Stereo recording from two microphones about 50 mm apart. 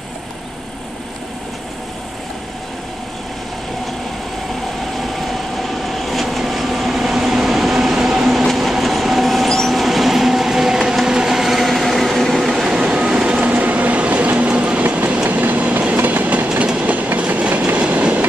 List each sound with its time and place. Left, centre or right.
4.9 s vehicle: centre
8.5 s train: centre
12.6 s train: centre
15.2 s train: right
16.6 s train: centre
16.9 s train: right